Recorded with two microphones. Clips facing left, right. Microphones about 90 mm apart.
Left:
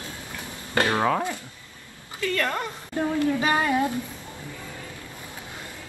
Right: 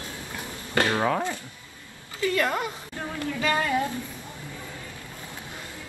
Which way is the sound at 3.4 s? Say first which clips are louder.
Left 2 dB; 25° left (ahead or behind).